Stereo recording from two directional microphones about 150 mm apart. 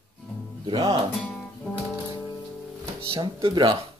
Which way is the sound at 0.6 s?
30° right (ahead or behind).